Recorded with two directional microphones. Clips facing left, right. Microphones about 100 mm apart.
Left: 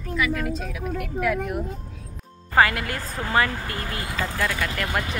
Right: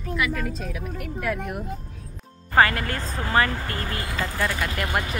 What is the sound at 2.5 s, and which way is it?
Speech, 10° left (ahead or behind).